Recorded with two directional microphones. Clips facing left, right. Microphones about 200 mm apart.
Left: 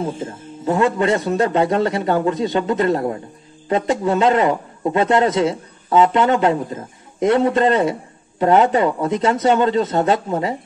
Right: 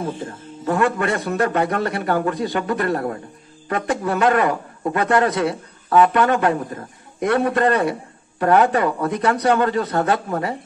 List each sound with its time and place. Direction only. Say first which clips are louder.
0.0 s a man's voice: left 2 dB; 20° left (ahead or behind)